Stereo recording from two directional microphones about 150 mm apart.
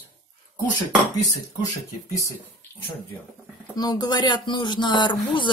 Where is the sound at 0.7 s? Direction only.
25° left (ahead or behind).